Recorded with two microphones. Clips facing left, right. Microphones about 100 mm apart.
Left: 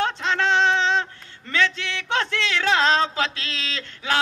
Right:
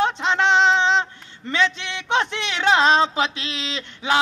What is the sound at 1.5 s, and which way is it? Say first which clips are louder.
Speech: right 1 dB; 20° right (ahead or behind).